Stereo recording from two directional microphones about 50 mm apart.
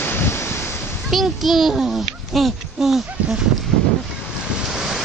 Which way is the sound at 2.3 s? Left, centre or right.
Centre.